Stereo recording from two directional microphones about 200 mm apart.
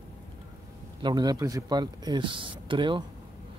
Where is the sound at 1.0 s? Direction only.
20° right (ahead or behind).